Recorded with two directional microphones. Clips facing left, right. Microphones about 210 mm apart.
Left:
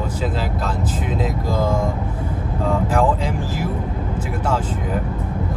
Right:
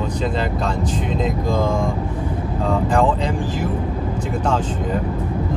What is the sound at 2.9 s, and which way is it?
Speech, 5° left (ahead or behind).